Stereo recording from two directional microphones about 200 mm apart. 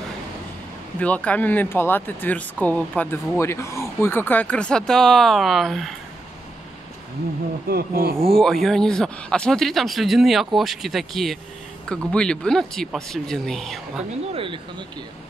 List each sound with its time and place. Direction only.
0.9 s speech: 5° left (ahead or behind)
7.6 s speech: 50° right (ahead or behind)
8.3 s speech: centre (ahead or behind)
14.3 s speech: 25° right (ahead or behind)